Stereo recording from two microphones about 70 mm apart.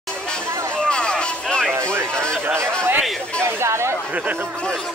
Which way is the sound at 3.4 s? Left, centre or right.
Right.